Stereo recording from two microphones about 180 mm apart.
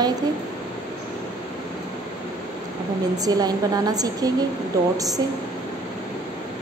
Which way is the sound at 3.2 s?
20° right (ahead or behind).